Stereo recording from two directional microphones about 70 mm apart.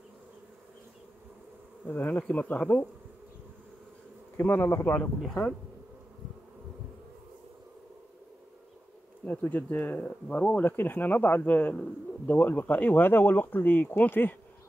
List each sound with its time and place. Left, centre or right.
1.9 s speech: left
4.4 s speech: left
9.2 s speech: left